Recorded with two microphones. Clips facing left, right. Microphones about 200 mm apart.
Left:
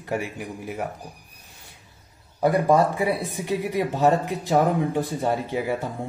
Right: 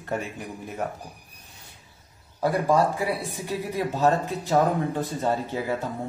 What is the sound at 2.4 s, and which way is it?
Speech, 20° left (ahead or behind).